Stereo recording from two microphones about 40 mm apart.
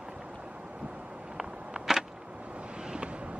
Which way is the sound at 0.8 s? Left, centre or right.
Right.